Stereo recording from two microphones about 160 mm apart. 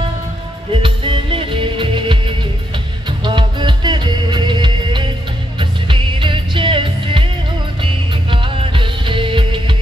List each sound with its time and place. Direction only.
0.8 s music: 30° right (ahead or behind)